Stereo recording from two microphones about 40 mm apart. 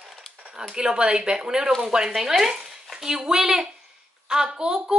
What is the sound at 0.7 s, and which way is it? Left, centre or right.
A woman's voice, right.